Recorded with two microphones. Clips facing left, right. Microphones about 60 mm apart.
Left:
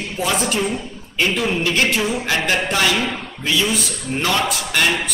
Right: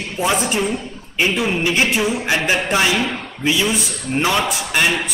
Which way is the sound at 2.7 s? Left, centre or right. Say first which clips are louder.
Right 1 dB; centre.